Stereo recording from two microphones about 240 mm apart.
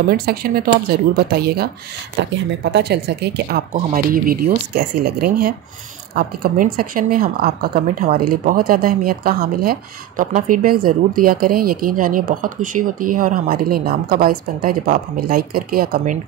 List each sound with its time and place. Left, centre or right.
0.1 s speech: right